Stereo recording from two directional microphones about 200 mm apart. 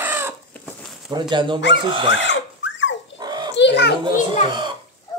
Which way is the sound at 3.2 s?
20° right (ahead or behind).